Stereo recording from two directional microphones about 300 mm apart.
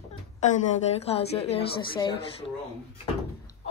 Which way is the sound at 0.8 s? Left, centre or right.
Centre.